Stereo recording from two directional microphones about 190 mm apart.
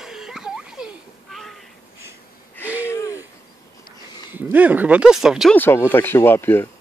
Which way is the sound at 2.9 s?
15° left (ahead or behind).